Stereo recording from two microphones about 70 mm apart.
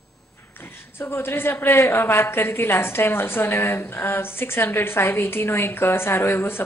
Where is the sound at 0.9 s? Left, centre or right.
Left.